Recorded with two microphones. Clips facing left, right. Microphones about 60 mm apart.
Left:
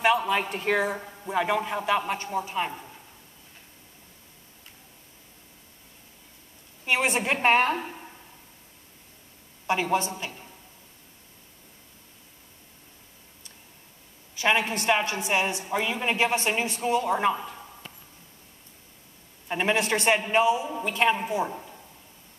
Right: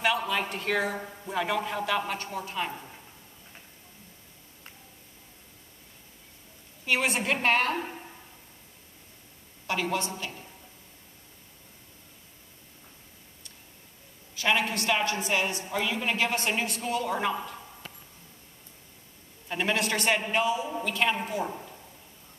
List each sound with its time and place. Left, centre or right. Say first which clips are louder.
0.0 s a woman's voice: left 4 dB; centre
6.9 s a woman's voice: left 2 dB; left
9.7 s a woman's voice: left 4 dB; left
14.3 s a woman's voice: left 2 dB; centre
19.4 s a woman's voice: left 3 dB; left